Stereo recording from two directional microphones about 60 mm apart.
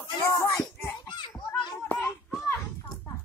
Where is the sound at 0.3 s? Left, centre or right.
Left.